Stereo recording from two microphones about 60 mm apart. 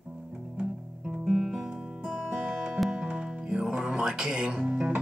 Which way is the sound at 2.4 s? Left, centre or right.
Centre.